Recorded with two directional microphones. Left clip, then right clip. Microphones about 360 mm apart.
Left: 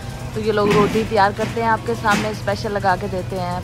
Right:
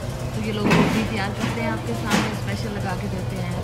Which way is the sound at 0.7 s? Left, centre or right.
Centre.